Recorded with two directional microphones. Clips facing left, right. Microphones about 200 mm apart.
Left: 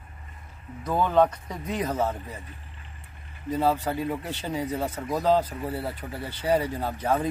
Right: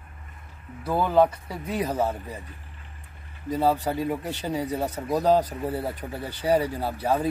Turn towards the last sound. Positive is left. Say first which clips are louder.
# right 1 dB
turn(degrees=-10)  # may be behind; listen again after turning